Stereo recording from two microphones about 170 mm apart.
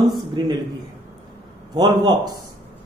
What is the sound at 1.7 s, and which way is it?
Speech, 25° right (ahead or behind).